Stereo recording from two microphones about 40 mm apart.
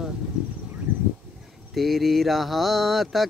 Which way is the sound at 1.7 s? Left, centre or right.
Centre.